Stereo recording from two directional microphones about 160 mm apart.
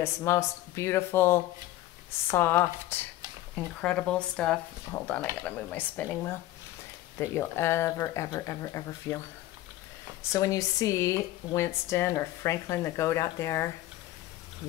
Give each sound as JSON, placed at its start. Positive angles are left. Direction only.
{"t": 0.0, "sound": "speech", "side_deg": 15}
{"t": 10.3, "sound": "speech", "side_deg": 20}